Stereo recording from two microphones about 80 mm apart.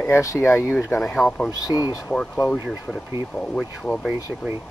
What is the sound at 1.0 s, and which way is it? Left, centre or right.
Speech, centre.